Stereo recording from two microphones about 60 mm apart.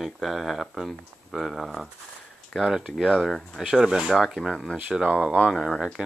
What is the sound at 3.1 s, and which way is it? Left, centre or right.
Speech, centre.